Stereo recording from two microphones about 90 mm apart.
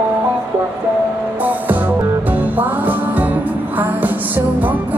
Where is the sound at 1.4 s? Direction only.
20° right (ahead or behind).